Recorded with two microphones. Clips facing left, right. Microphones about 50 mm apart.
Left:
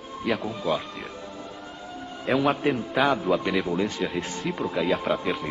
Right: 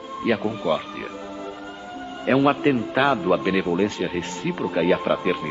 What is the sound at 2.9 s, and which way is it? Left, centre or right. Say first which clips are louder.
A man's voice: right 3 dB; centre.